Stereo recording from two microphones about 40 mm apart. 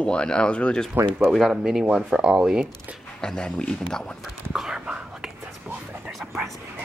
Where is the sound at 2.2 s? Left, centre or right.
Right.